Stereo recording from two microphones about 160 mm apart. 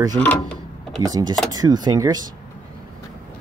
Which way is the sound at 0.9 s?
25° right (ahead or behind).